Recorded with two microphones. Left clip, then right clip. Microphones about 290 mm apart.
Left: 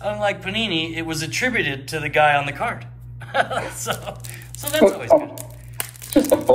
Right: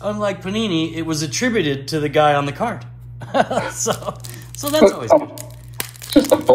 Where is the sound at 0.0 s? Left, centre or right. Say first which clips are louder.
Even; centre.